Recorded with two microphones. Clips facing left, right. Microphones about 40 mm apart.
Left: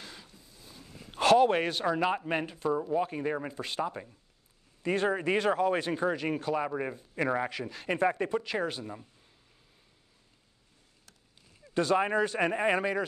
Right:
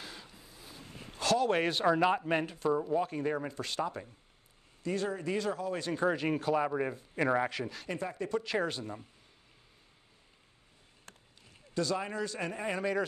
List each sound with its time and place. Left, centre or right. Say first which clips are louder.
0.0 s a sound: right 1 dB; centre
1.2 s a sound: left 7 dB; left
1.5 s speech: even; centre
4.8 s speech: left 5 dB; left
5.9 s speech: even; centre
7.9 s speech: left 11 dB; left
8.5 s speech: even; centre
11.7 s speech: left 7 dB; left